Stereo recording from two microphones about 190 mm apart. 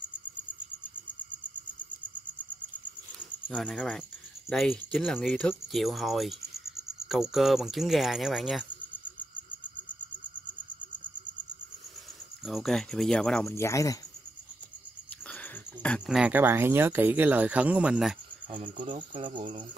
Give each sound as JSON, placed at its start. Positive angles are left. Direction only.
{"t": 3.2, "sound": "cricket", "side_deg": 5}
{"t": 4.5, "sound": "speech", "side_deg": 5}
{"t": 12.4, "sound": "speech", "side_deg": 0}
{"t": 15.2, "sound": "cricket", "side_deg": 5}
{"t": 16.2, "sound": "speech", "side_deg": -10}
{"t": 19.2, "sound": "cricket", "side_deg": -25}